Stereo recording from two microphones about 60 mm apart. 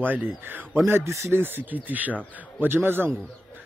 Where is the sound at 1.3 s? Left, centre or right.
Right.